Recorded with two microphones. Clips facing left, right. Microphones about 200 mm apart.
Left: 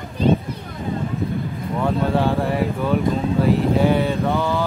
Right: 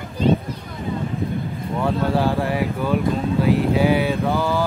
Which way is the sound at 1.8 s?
Centre (ahead or behind).